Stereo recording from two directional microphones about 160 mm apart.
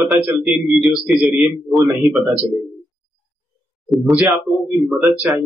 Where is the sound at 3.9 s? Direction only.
Centre (ahead or behind).